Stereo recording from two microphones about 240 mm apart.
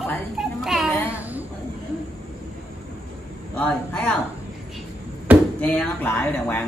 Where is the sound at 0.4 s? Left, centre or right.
Centre.